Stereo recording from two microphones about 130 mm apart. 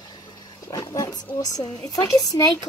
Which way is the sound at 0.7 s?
25° left (ahead or behind).